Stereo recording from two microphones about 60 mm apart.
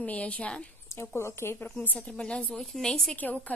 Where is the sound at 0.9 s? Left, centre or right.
Left.